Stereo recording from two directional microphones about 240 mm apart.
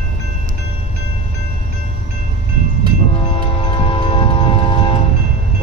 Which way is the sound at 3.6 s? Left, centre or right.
Left.